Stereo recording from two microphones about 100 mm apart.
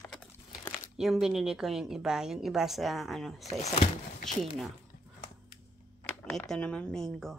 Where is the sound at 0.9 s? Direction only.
5° right (ahead or behind).